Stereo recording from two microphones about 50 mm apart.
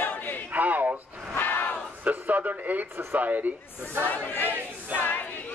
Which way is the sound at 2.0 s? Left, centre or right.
Right.